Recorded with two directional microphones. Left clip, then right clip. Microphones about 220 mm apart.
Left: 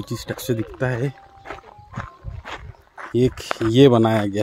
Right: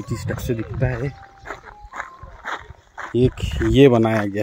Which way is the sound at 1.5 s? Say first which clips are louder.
Right 2 dB; centre (ahead or behind).